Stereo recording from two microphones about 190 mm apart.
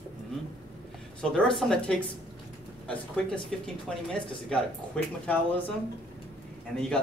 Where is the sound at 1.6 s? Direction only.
5° left (ahead or behind).